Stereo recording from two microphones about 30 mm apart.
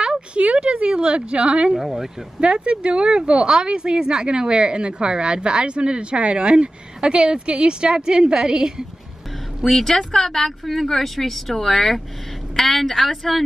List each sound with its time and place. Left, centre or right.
0.3 s a sound: right
0.8 s a woman's voice: right
1.8 s speech: centre
2.4 s a woman's voice: right
9.7 s speech: centre